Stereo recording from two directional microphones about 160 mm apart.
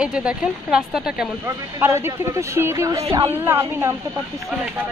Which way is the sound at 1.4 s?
15° right (ahead or behind).